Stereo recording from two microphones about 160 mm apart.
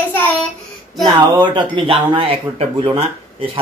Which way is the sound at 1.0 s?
30° right (ahead or behind).